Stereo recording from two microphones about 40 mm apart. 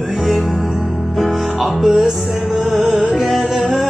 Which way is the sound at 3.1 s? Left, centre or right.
Centre.